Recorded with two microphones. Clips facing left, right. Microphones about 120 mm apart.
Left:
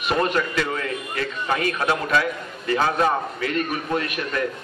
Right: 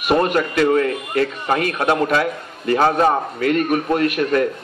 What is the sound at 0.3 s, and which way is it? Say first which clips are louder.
Speech: right 7 dB; 45° right (ahead or behind).